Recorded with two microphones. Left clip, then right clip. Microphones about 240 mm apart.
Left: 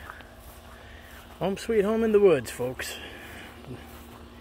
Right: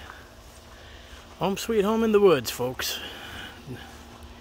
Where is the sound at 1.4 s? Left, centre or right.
Centre.